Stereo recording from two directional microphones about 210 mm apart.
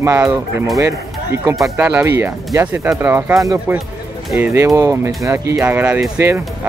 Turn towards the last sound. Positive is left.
turn(degrees=-10)  # may be behind; listen again after turning